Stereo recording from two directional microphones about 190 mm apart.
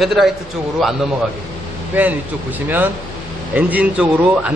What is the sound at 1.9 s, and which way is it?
Speech, 10° right (ahead or behind).